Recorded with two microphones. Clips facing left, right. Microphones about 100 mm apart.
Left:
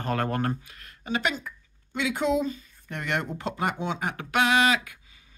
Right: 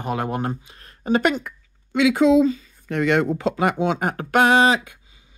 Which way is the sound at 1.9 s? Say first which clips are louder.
Right 10 dB; 90° right.